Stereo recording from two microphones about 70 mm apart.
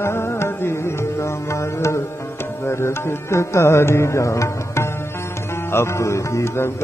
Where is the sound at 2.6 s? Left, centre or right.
Left.